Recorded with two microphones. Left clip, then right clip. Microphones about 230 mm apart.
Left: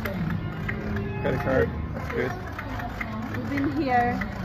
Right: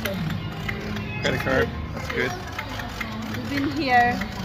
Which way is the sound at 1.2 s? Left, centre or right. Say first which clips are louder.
Right 2 dB; centre.